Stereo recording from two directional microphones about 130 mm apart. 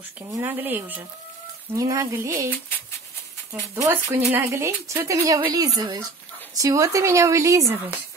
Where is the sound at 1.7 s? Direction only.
25° right (ahead or behind).